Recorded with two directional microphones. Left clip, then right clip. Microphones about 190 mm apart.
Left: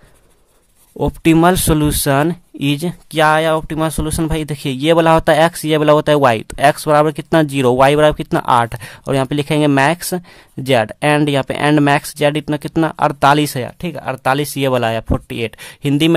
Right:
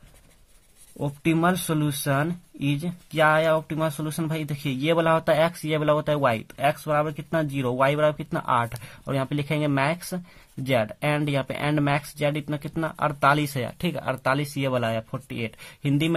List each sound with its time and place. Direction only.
0.9 s speech: 45° left (ahead or behind)